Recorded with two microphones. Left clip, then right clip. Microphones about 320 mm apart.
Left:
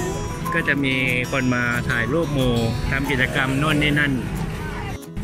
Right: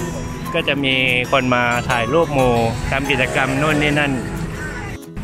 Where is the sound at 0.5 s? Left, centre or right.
Centre.